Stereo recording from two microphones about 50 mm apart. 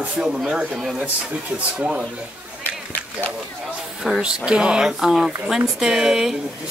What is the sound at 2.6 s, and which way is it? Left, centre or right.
Run, left.